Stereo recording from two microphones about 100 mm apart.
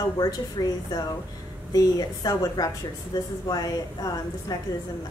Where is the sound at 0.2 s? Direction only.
40° left (ahead or behind).